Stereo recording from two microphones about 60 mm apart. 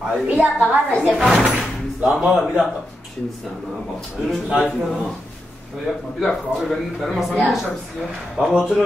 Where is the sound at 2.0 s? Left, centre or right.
Centre.